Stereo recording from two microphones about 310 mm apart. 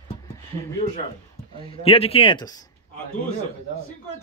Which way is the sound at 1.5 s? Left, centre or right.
Centre.